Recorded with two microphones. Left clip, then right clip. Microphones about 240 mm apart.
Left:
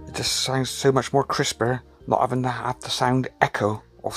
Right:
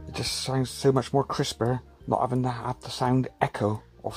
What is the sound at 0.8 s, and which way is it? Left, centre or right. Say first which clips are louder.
Speech: left 3 dB; left.